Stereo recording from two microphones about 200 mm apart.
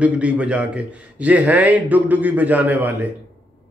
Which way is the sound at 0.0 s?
5° right (ahead or behind).